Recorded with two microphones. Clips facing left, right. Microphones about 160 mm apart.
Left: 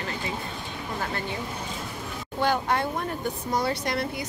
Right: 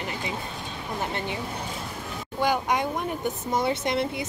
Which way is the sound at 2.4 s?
15° right (ahead or behind).